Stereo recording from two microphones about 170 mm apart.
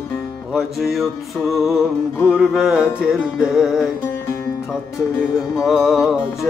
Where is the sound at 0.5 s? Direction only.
Centre (ahead or behind).